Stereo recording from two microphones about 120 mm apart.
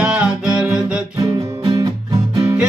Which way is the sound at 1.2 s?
30° right (ahead or behind).